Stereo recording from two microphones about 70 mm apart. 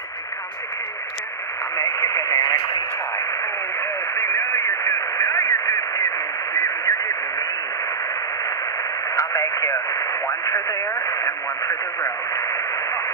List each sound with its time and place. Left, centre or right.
1.8 s radio: left
3.8 s radio: left
9.1 s radio: left